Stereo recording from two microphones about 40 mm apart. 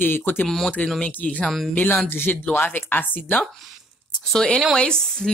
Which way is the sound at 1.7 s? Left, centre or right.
Left.